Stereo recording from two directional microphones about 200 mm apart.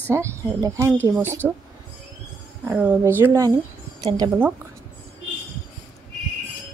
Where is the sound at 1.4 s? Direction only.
Centre (ahead or behind).